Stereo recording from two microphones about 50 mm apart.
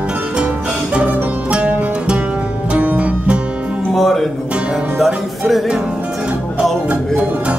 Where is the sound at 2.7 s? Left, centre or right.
Right.